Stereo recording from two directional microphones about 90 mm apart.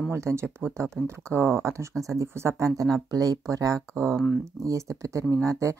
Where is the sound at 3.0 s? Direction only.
45° right (ahead or behind).